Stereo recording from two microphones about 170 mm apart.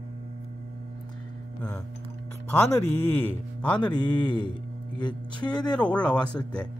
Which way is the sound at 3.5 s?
5° left (ahead or behind).